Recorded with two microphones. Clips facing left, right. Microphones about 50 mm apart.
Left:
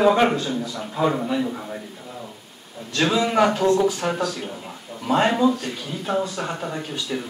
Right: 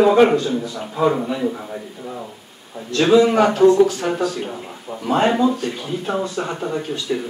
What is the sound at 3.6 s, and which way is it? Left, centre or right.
Speech, right.